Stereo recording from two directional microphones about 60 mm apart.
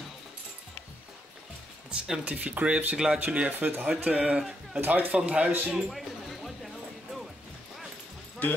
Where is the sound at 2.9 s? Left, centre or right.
Centre.